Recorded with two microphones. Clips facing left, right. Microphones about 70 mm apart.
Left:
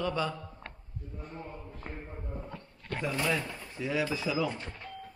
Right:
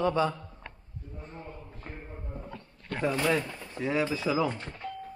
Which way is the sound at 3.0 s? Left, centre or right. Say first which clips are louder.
Right 4 dB; right.